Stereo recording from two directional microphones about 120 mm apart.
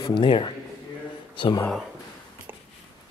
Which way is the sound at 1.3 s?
40° left (ahead or behind).